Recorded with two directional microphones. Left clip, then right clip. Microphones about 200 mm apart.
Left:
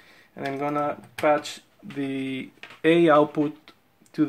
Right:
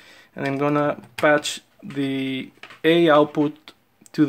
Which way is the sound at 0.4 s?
35° right (ahead or behind).